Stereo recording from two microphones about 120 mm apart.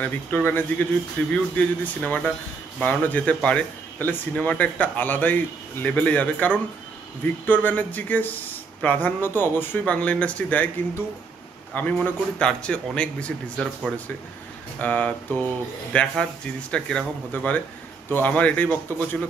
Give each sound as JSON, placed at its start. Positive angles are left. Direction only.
{"t": 0.0, "sound": "speech", "side_deg": 15}
{"t": 11.7, "sound": "speech", "side_deg": 15}
{"t": 14.8, "sound": "speech", "side_deg": 15}